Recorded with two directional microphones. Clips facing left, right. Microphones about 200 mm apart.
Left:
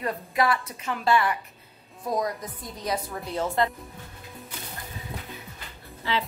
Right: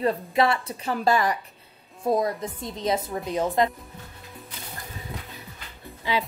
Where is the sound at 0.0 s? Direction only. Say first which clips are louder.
Right 4 dB; 25° right (ahead or behind).